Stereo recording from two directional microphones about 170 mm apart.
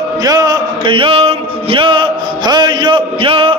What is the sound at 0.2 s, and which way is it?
Music, 25° right (ahead or behind).